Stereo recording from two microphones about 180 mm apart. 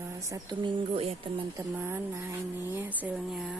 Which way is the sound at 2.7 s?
10° right (ahead or behind).